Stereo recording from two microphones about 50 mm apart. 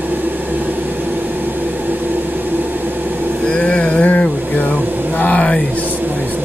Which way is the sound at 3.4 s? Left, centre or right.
Left.